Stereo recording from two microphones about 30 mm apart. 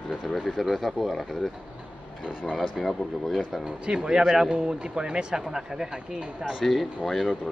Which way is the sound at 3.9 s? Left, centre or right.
Right.